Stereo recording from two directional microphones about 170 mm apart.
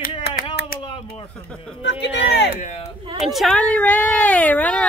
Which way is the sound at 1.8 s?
85° left.